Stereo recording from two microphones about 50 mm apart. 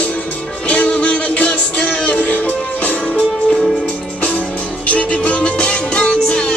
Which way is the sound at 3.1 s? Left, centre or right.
Centre.